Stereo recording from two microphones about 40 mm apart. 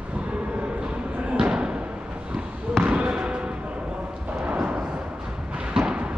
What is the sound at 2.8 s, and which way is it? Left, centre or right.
Basketball bounce, right.